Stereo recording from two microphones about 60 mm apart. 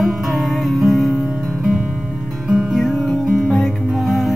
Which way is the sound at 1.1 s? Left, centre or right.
Centre.